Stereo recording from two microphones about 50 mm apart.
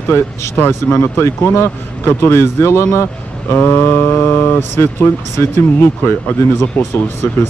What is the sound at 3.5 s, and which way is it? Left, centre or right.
Speech, left.